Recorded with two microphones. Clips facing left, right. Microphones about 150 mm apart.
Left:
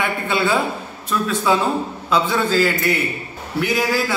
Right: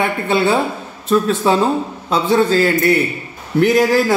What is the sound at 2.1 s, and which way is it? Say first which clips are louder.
Speech: right 5 dB; 35° right (ahead or behind).